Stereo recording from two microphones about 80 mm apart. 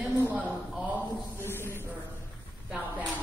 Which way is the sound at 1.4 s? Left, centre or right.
Left.